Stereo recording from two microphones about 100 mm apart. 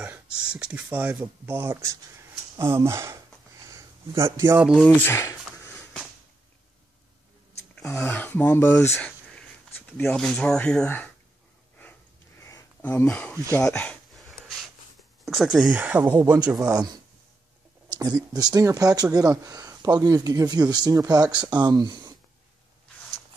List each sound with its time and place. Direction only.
0.0 s a sound: 10° right (ahead or behind)
0.9 s speech: 20° right (ahead or behind)
3.7 s a sound: 30° right (ahead or behind)
4.8 s speech: 20° left (ahead or behind)
7.8 s speech: 25° left (ahead or behind)
10.0 s speech: 5° left (ahead or behind)
12.4 s a sound: 30° left (ahead or behind)
13.0 s speech: 15° left (ahead or behind)
15.2 s speech: centre (ahead or behind); by 22.1 s 40° right (ahead or behind)